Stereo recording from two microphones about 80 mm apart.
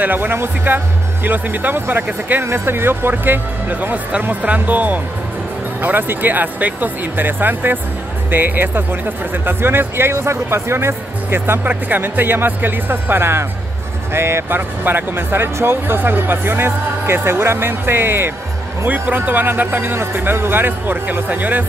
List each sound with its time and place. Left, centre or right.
0.0 s speech: right